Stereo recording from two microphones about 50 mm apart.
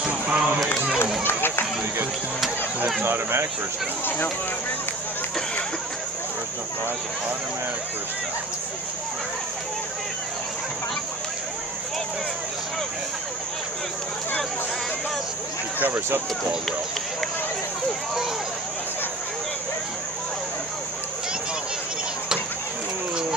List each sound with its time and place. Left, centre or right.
0.0 s a sound: right
3.0 s speech: right
15.8 s speech: right